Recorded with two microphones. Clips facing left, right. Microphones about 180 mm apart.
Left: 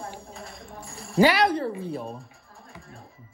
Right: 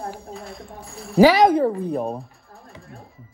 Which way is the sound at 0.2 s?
Centre (ahead or behind).